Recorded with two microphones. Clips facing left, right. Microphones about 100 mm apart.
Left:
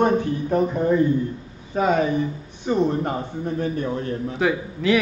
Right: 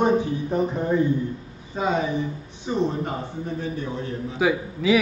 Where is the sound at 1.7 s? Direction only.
55° left (ahead or behind).